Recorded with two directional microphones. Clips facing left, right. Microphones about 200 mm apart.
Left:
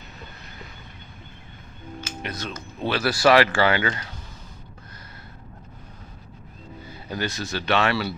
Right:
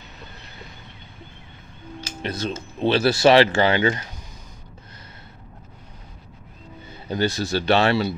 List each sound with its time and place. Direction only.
2.0 s speech: 35° right (ahead or behind)
6.9 s a man's voice: 30° right (ahead or behind)